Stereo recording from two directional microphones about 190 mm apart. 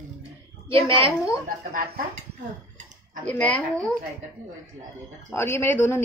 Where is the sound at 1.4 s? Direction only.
45° right (ahead or behind).